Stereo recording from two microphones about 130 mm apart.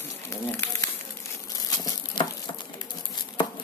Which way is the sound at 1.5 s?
35° left (ahead or behind).